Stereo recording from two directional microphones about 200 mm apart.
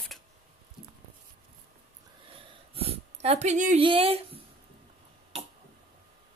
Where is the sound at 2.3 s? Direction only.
30° right (ahead or behind).